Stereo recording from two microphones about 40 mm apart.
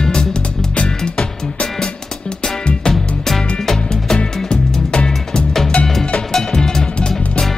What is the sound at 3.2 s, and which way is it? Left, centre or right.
Music, centre.